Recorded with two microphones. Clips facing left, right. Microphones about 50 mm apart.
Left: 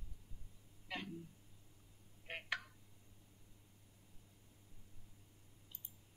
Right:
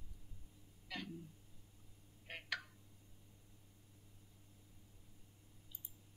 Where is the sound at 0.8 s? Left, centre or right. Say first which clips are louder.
Left 1 dB; left.